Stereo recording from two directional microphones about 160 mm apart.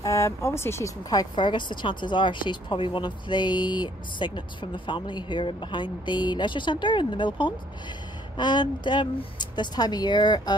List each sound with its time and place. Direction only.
0.0 s speech: 20° left (ahead or behind)
1.3 s speech: 30° left (ahead or behind)